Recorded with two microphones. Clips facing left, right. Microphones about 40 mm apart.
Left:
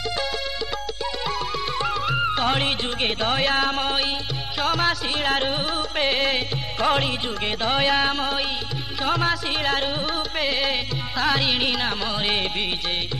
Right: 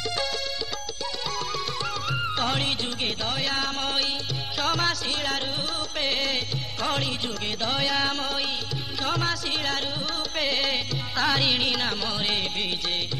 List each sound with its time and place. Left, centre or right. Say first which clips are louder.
1.8 s music: left 8 dB; left
3.0 s music: left 6 dB; left; by 4.9 s centre
5.2 s music: left 6 dB; left